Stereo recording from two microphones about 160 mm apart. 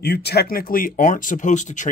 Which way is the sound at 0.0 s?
90° left.